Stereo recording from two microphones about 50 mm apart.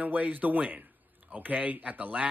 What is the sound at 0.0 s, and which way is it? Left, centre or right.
Speech, right.